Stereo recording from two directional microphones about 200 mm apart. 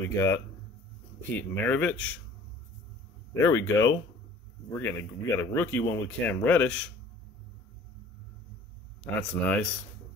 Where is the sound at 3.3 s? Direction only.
15° left (ahead or behind).